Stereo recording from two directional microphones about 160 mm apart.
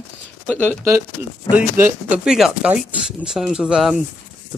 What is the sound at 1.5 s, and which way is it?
Speech, 10° right (ahead or behind).